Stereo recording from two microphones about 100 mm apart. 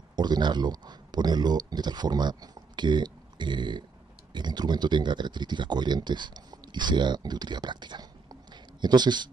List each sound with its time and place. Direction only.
0.1 s speech: 45° right (ahead or behind)